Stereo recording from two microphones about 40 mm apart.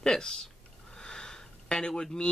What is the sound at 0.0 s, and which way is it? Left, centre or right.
Speech, centre.